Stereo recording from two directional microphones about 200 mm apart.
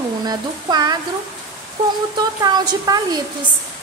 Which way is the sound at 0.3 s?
20° right (ahead or behind).